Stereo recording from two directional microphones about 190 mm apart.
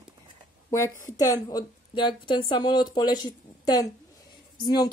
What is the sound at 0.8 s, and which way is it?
A woman's voice, 15° left (ahead or behind).